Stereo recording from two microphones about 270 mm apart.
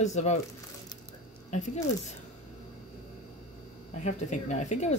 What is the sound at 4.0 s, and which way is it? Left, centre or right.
Speech, left.